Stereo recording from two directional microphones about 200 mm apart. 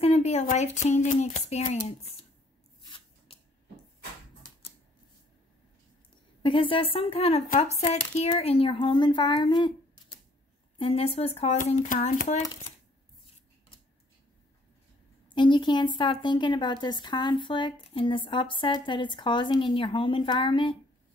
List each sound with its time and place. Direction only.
0.0 s speech: 35° left (ahead or behind)
3.3 s a sound: 30° left (ahead or behind)
6.4 s a woman's voice: 25° left (ahead or behind)
7.4 s a woman's voice: 40° left (ahead or behind)
15.3 s a woman's voice: 25° left (ahead or behind)